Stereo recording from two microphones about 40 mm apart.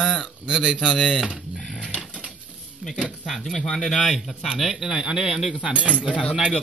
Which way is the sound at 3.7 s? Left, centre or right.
Left.